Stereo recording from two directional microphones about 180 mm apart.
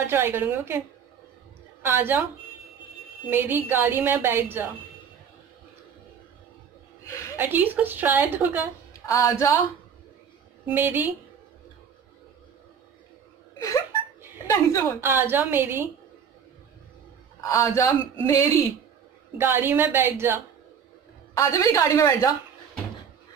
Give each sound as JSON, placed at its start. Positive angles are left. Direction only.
{"t": 0.0, "sound": "a woman's voice", "side_deg": -15}
{"t": 3.3, "sound": "a woman's voice", "side_deg": -10}
{"t": 7.3, "sound": "a woman's voice", "side_deg": -10}
{"t": 9.0, "sound": "speech", "side_deg": 15}
{"t": 10.6, "sound": "a woman's voice", "side_deg": -10}
{"t": 14.5, "sound": "speech", "side_deg": 15}
{"t": 15.0, "sound": "a woman's voice", "side_deg": -15}
{"t": 17.4, "sound": "speech", "side_deg": 15}
{"t": 19.3, "sound": "a woman's voice", "side_deg": -10}
{"t": 21.4, "sound": "speech", "side_deg": 15}